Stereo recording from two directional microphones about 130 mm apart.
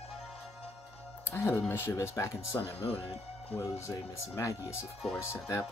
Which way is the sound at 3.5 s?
20° left (ahead or behind).